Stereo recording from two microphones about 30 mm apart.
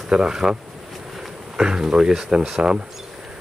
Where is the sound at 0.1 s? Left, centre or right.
Right.